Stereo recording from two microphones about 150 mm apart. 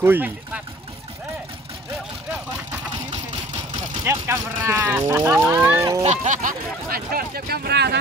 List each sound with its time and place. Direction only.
0.0 s speech: 10° right (ahead or behind)
4.0 s speech: 15° right (ahead or behind)
6.0 s speech: 55° right (ahead or behind); by 8.0 s 90° right